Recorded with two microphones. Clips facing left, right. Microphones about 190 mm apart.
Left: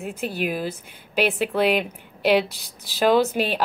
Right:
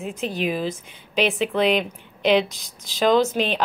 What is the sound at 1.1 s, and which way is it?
A woman's voice, 5° left (ahead or behind).